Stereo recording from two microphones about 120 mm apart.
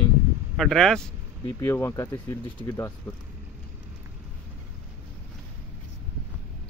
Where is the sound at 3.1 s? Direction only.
15° left (ahead or behind).